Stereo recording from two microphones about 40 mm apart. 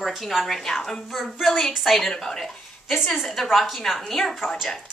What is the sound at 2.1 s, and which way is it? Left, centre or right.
A woman's voice, centre.